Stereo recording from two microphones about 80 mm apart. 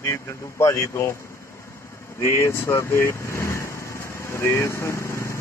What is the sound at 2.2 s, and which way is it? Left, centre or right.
Speech, left.